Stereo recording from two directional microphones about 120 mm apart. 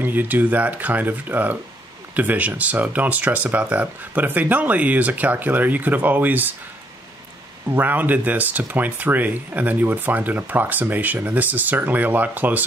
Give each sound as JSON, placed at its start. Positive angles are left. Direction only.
{"t": 0.0, "sound": "speech", "side_deg": -15}
{"t": 7.7, "sound": "speech", "side_deg": -15}